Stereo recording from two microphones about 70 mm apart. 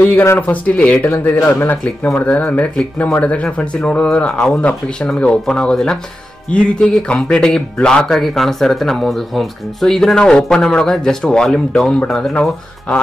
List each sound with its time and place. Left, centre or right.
0.4 s speech: left